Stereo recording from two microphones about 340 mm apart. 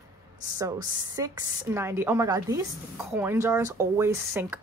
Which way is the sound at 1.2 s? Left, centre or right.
Centre.